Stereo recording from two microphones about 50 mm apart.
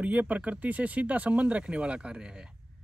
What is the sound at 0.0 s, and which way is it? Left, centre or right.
Speech, right.